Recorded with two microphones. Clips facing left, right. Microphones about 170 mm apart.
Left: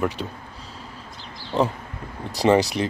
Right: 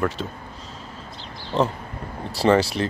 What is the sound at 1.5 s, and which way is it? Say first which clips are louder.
Speech: even; 15° left (ahead or behind).